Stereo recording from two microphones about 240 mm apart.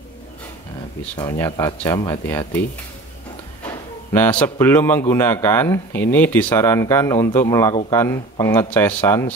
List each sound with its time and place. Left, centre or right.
1.4 s speech: centre
4.1 s speech: centre